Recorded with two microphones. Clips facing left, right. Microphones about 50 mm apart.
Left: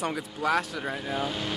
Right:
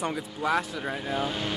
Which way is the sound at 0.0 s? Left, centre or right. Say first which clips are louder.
Even; centre.